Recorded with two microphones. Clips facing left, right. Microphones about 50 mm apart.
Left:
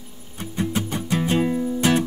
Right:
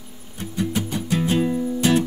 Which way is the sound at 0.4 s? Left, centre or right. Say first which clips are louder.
Even; centre.